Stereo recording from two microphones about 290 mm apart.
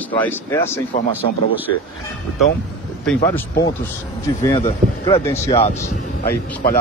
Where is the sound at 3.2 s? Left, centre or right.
Centre.